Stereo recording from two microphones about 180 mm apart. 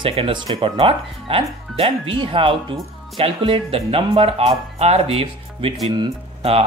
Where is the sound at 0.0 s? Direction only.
30° right (ahead or behind).